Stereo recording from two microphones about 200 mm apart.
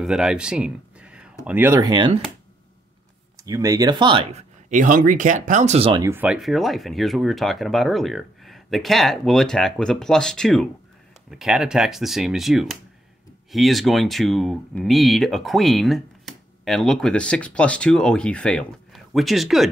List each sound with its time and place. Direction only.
0.0 s speech: 5° right (ahead or behind); by 2.1 s 25° right (ahead or behind)
3.3 s speech: 15° right (ahead or behind)
4.3 s speech: 35° right (ahead or behind)
6.0 s speech: 10° right (ahead or behind)